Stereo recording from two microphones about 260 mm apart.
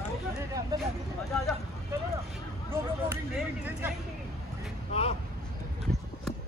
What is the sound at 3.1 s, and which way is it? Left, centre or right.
Speech, centre.